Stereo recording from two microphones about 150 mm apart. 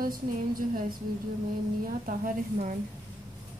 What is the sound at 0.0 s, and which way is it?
Speech, 70° right (ahead or behind).